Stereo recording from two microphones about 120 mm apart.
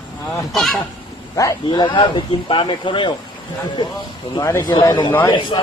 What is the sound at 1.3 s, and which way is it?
Speech, 25° left (ahead or behind).